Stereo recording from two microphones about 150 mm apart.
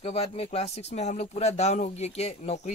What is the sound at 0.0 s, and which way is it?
Speech, 40° left (ahead or behind).